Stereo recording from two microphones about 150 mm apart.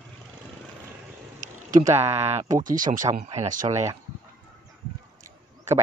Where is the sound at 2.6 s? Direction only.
60° right (ahead or behind).